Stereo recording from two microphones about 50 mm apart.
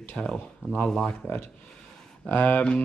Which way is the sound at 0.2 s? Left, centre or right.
Centre.